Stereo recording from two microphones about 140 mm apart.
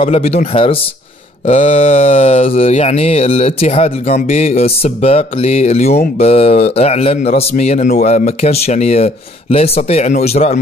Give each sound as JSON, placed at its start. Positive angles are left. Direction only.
{"t": 0.0, "sound": "speech", "side_deg": 45}